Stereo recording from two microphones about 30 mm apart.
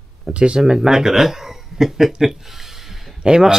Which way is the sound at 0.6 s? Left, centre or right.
Centre.